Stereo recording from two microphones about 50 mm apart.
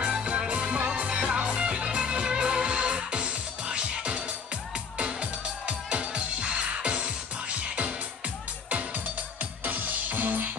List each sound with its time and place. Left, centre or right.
0.0 s music: right
5.7 s music: right
9.7 s music: right